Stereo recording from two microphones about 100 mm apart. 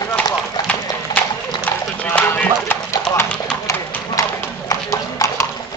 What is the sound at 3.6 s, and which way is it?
Clip-clop, 25° left (ahead or behind).